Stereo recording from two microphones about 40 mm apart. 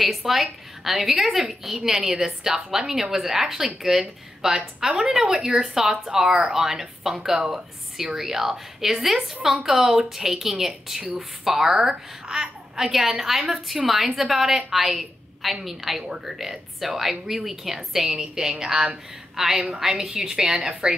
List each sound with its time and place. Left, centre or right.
0.0 s a woman's voice: centre